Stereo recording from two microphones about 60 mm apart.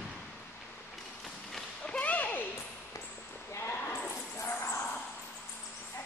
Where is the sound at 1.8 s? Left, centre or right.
Left.